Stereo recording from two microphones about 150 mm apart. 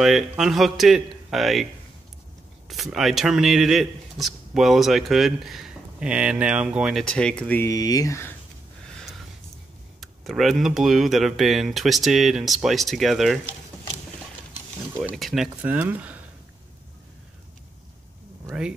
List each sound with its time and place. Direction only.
0.0 s speech: centre (ahead or behind)
2.7 s speech: centre (ahead or behind)
7.6 s speech: 25° left (ahead or behind)
9.9 s speech: centre (ahead or behind)
15.0 s speech: centre (ahead or behind)
18.5 s speech: 5° right (ahead or behind)